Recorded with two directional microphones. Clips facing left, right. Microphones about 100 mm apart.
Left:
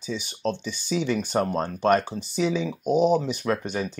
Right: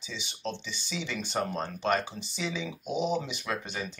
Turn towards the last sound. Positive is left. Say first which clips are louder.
# left 8 dB
turn(degrees=45)  # may be behind; listen again after turning